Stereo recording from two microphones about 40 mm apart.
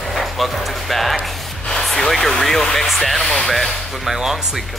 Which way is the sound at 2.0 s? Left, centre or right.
Centre.